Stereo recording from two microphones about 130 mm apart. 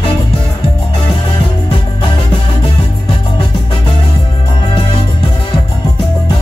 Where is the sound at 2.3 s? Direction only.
45° left (ahead or behind).